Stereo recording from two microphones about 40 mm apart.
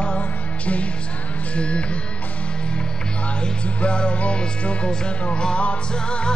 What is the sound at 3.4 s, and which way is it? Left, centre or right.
Music, left.